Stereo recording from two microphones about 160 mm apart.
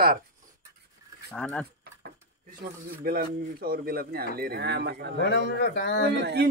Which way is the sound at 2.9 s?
70° right (ahead or behind).